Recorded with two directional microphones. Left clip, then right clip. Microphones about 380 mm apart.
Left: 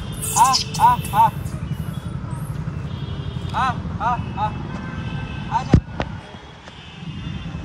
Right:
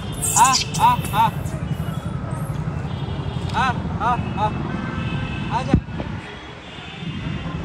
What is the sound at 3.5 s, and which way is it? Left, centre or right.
Vehicle, left.